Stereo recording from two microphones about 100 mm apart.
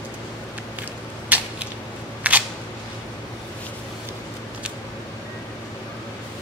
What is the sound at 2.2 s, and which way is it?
Single-lens reflex camera, 15° right (ahead or behind).